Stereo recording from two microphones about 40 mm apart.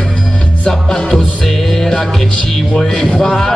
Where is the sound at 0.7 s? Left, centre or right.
Centre.